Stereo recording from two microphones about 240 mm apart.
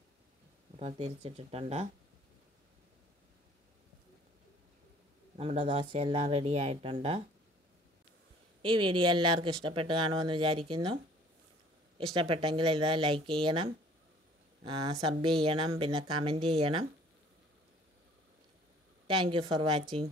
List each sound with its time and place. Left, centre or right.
0.7 s speech: right
5.4 s speech: right
8.6 s speech: centre
12.2 s speech: right
19.0 s speech: right